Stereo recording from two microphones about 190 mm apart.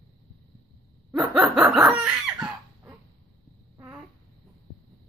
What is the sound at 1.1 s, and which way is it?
Snicker, centre (ahead or behind).